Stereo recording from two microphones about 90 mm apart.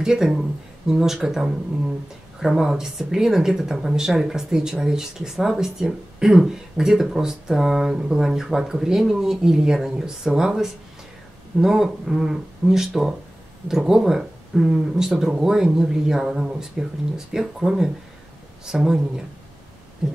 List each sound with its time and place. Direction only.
0.0 s speech: 5° right (ahead or behind)